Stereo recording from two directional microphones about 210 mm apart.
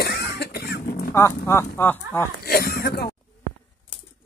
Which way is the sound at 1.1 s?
15° left (ahead or behind).